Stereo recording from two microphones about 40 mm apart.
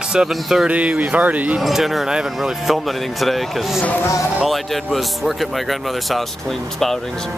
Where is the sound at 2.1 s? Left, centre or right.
Centre.